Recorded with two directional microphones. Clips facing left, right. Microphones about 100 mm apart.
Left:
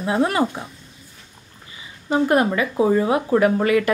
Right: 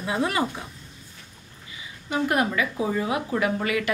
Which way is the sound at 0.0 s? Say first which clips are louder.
Left 6 dB; 40° left (ahead or behind).